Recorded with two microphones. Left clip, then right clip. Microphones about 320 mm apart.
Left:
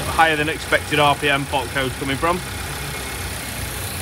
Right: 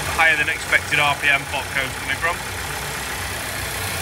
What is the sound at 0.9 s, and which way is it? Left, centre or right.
Speech, centre.